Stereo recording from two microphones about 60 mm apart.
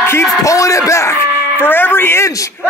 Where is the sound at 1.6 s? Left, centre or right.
Left.